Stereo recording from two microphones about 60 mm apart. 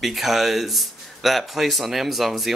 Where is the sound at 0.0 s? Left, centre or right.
Centre.